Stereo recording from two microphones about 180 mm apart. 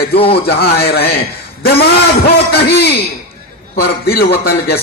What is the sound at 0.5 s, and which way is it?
A man's voice, 60° left (ahead or behind).